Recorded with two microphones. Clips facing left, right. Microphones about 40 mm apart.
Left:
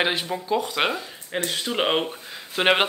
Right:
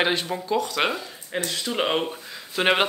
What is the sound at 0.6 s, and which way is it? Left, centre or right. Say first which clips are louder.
Speech: even; centre.